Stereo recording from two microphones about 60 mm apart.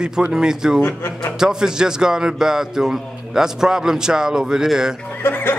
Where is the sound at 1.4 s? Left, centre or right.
Centre.